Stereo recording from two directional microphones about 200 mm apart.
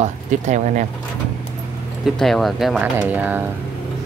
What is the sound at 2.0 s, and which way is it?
Speech, centre (ahead or behind).